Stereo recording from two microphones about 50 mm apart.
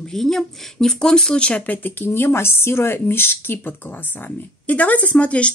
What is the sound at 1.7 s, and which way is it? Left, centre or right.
Speech, left.